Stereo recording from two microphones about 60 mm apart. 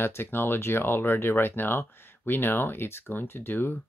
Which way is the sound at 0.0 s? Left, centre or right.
Left.